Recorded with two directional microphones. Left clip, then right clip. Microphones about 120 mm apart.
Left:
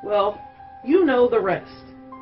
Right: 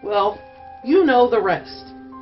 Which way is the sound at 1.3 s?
40° right (ahead or behind).